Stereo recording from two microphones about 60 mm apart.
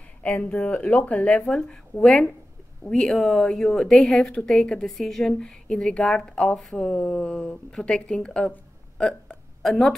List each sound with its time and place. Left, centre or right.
0.4 s a woman's voice: centre